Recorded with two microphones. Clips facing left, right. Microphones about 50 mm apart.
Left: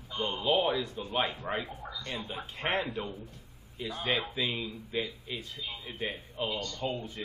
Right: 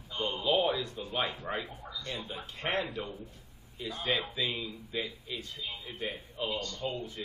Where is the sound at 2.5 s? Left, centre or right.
Left.